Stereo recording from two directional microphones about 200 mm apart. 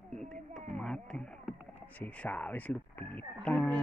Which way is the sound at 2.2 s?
5° left (ahead or behind).